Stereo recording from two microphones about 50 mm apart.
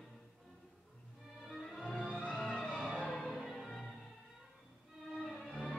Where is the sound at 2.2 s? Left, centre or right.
Centre.